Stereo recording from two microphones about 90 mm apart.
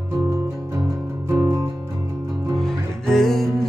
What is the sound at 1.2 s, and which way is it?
Music, 30° right (ahead or behind).